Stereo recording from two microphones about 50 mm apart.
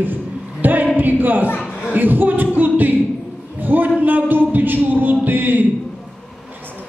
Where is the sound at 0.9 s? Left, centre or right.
Right.